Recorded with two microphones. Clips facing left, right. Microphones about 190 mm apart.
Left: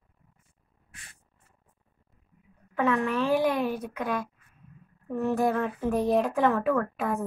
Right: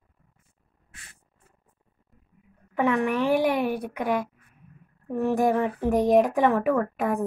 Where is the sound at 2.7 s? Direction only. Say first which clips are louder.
Right 2 dB; 15° right (ahead or behind).